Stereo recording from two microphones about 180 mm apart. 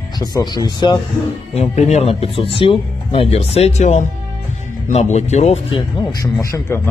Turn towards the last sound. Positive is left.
turn(degrees=15)  # may be behind; listen again after turning